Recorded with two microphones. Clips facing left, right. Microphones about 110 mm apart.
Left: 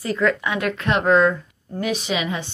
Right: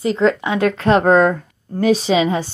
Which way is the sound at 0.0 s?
25° right (ahead or behind).